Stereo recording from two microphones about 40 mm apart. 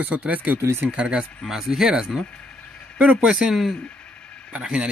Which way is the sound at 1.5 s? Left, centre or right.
Centre.